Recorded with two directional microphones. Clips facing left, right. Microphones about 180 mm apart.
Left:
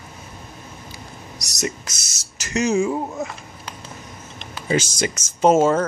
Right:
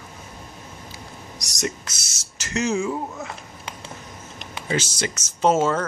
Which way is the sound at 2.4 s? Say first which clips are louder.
Left 3 dB; 10° left (ahead or behind).